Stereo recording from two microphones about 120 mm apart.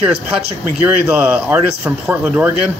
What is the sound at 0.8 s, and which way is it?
Speech, 10° right (ahead or behind).